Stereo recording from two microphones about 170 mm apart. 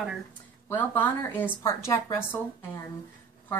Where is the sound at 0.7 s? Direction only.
15° left (ahead or behind).